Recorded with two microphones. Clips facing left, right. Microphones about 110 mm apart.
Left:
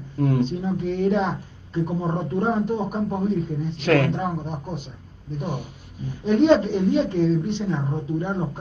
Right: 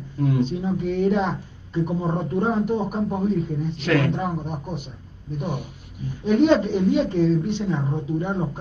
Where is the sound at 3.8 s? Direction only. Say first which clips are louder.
Left 2 dB; 40° left (ahead or behind).